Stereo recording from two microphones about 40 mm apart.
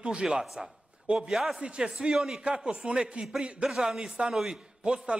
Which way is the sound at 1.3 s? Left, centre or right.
Centre.